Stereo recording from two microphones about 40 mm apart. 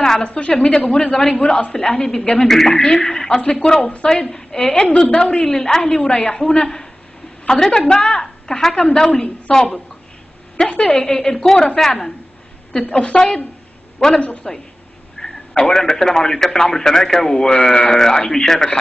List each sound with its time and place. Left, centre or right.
0.2 s a woman's voice: left
10.7 s a woman's voice: left
11.0 s speech: centre
12.9 s a woman's voice: left
13.9 s a man's voice: centre
14.4 s a woman's voice: left
15.2 s a sound: centre
15.7 s speech: centre